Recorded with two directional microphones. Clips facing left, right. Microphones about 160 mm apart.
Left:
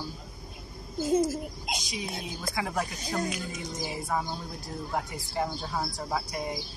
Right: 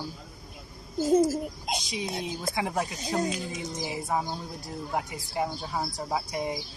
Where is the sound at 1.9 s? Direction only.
25° right (ahead or behind).